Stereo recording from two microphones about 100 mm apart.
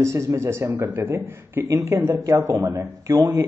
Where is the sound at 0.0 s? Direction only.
30° right (ahead or behind).